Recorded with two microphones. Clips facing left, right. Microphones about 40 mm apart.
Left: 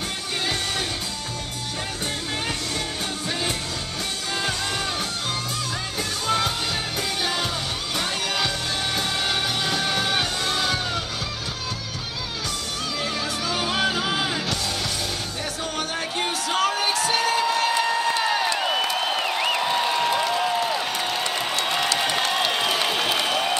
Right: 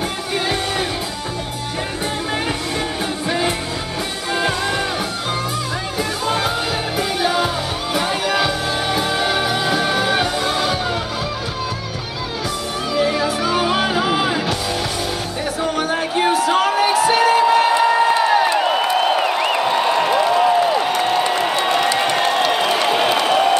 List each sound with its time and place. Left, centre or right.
3.3 s music: centre
5.9 s music: centre
12.9 s music: centre
15.6 s music: centre
22.8 s a sound: right